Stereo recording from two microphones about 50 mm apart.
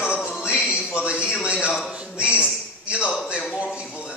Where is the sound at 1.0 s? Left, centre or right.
Right.